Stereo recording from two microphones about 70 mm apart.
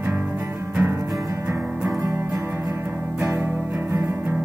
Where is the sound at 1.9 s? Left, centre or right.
Right.